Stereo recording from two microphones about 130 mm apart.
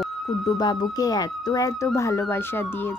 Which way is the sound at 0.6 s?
30° left (ahead or behind).